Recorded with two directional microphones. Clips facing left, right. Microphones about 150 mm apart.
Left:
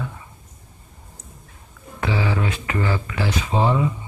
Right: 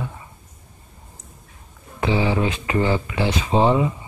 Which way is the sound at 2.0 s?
20° right (ahead or behind).